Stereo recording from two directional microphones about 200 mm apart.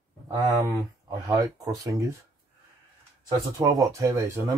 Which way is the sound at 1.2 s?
20° right (ahead or behind).